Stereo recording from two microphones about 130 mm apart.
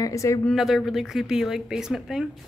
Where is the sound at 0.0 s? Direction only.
25° left (ahead or behind).